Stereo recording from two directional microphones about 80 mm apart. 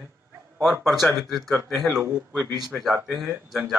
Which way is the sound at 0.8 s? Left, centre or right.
Centre.